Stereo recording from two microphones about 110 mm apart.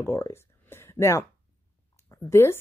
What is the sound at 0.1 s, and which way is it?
Speech, 25° left (ahead or behind).